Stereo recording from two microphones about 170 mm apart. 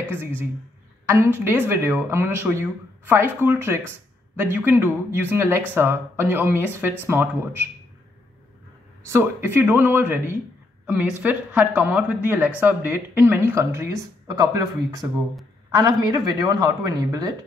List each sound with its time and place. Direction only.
0.1 s speech: 10° right (ahead or behind)
9.0 s a man's voice: 15° right (ahead or behind)